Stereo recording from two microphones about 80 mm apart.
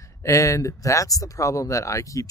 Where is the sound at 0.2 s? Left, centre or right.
Left.